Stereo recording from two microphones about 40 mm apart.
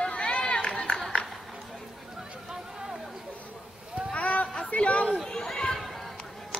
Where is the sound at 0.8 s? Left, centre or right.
Left.